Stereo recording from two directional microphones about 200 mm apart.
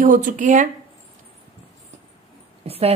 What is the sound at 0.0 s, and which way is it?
Speech, 40° right (ahead or behind).